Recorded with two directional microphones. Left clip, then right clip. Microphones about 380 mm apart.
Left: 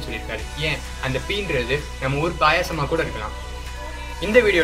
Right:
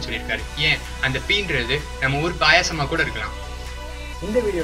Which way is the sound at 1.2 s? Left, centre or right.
Centre.